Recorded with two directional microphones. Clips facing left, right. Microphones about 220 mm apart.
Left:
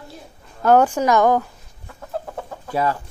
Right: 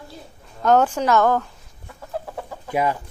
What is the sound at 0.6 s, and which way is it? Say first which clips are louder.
Speech: left 2 dB; 10° left (ahead or behind).